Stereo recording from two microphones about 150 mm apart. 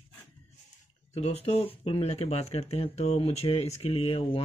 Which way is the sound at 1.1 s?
45° left (ahead or behind).